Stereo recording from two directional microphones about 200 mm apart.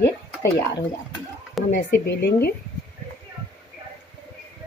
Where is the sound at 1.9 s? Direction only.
50° left (ahead or behind).